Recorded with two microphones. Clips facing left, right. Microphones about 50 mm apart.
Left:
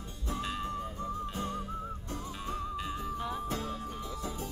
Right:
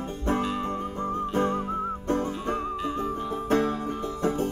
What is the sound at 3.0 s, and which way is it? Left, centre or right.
Music, right.